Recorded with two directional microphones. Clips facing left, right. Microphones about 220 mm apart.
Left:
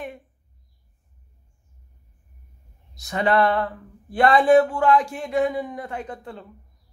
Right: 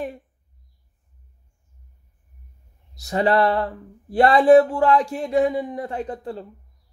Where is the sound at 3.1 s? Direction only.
35° right (ahead or behind).